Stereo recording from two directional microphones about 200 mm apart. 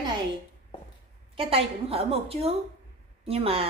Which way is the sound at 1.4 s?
30° right (ahead or behind).